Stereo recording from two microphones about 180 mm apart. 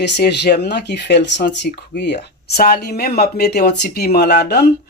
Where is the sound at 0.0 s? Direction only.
70° left (ahead or behind).